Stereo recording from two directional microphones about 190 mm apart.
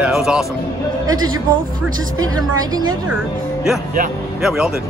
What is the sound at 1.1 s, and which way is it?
Speech, 20° right (ahead or behind).